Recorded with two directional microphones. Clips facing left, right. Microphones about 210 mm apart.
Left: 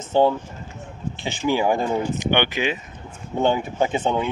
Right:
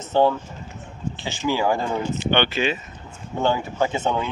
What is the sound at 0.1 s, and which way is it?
Speech, 15° left (ahead or behind).